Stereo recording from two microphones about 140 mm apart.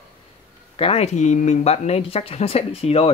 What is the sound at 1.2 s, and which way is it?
Speech, 60° left (ahead or behind).